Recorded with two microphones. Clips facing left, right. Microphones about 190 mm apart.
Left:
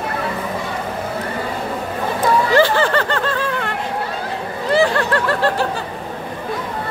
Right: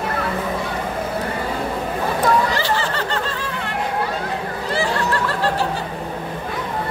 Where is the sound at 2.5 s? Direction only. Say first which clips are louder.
Left 8 dB; 55° left (ahead or behind).